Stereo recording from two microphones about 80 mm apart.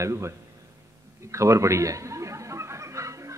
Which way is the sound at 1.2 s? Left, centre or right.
Right.